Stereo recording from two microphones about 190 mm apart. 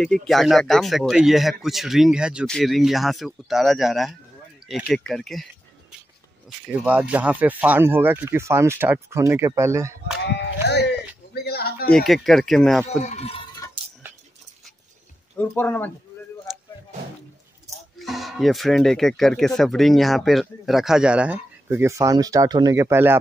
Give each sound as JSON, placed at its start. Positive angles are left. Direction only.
{"t": 0.0, "sound": "speech", "side_deg": 0}
{"t": 10.2, "sound": "sheep", "side_deg": 65}
{"t": 11.9, "sound": "speech", "side_deg": 0}
{"t": 13.0, "sound": "speech", "side_deg": 35}
{"t": 15.3, "sound": "speech", "side_deg": 10}
{"t": 17.9, "sound": "speech", "side_deg": 0}